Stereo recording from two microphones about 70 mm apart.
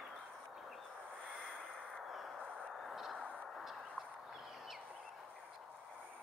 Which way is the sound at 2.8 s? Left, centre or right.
Centre.